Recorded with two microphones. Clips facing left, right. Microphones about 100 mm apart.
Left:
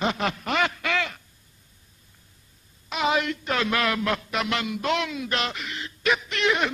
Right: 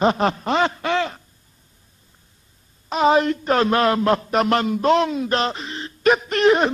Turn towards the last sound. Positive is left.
turn(degrees=-40)  # may be behind; listen again after turning